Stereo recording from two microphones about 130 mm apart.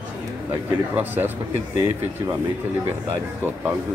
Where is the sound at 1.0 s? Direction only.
15° right (ahead or behind).